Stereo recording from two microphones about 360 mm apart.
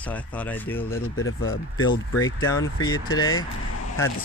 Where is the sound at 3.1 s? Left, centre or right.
Left.